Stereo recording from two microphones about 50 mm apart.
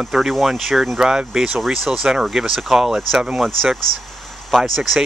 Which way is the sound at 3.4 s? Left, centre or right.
Centre.